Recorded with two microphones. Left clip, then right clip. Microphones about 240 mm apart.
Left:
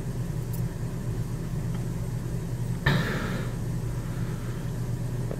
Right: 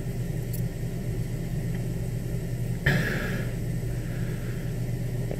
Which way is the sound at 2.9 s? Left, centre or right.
Left.